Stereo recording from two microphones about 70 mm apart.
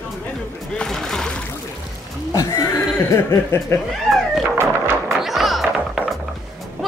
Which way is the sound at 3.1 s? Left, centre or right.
Left.